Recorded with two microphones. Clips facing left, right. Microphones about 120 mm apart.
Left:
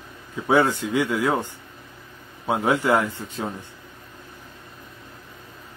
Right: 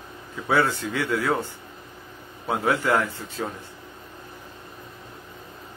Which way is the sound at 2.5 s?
15° left (ahead or behind).